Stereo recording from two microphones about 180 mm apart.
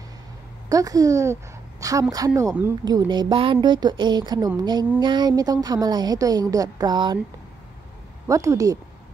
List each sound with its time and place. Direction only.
0.7 s a woman's voice: 20° right (ahead or behind)
8.3 s speech: 15° right (ahead or behind)